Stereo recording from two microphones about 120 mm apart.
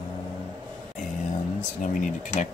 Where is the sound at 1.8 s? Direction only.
90° left.